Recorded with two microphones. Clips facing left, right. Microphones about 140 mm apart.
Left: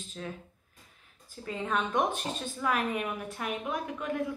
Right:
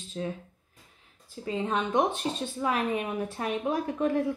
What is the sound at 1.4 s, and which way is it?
A woman's voice, 25° right (ahead or behind).